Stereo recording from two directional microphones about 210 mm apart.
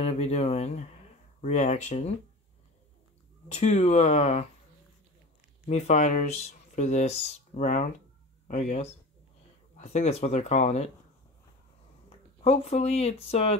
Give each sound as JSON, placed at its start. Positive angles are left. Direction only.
{"t": 0.0, "sound": "speech", "side_deg": 30}
{"t": 3.5, "sound": "speech", "side_deg": 35}
{"t": 5.7, "sound": "speech", "side_deg": 30}
{"t": 12.1, "sound": "speech", "side_deg": 30}